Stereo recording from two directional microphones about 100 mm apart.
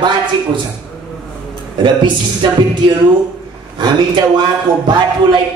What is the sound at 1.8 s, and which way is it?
Speech, 50° right (ahead or behind).